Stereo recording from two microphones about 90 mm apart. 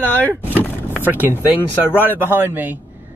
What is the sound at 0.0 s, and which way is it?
Speech, 20° left (ahead or behind).